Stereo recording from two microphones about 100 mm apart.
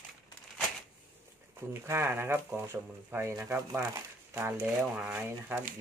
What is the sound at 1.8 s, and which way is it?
Speech, 25° right (ahead or behind).